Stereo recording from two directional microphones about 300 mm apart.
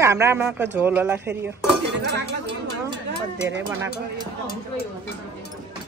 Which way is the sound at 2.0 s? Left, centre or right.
Right.